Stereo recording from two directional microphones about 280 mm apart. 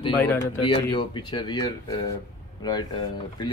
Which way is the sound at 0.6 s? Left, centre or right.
Centre.